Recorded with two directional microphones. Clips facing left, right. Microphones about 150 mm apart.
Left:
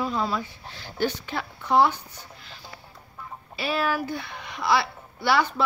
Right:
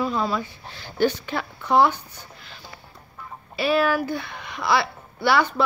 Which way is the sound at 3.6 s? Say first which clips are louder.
Right 5 dB; 65° right (ahead or behind).